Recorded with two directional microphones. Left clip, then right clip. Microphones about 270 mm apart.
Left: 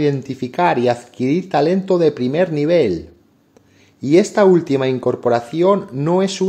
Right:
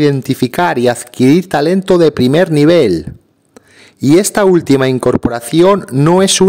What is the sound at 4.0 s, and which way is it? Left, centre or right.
Speech, right.